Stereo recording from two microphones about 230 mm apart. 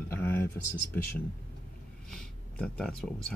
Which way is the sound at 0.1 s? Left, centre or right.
Centre.